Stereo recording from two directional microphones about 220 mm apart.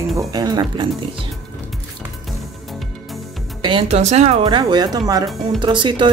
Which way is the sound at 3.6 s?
20° right (ahead or behind).